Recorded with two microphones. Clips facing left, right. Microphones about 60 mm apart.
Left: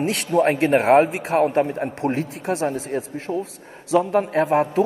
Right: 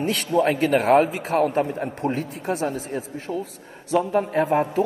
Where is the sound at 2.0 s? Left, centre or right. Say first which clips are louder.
Left 2 dB; left.